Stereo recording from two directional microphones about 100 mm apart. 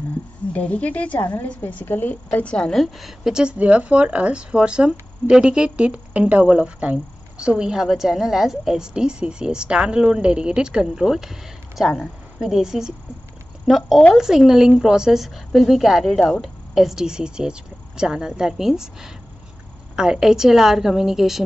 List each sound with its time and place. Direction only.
0.5 s a woman's voice: 15° left (ahead or behind); by 21.5 s 5° right (ahead or behind)